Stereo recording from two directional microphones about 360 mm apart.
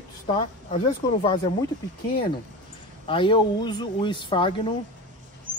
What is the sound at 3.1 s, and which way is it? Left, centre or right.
Speech, centre.